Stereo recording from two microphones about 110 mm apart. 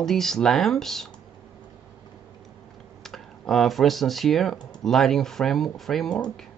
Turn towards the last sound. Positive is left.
turn(degrees=5)  # may be behind; listen again after turning